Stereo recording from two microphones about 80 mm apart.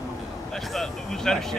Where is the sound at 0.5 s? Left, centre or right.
Centre.